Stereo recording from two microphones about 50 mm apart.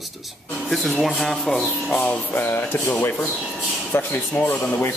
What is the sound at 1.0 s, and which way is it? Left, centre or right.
Speech, centre.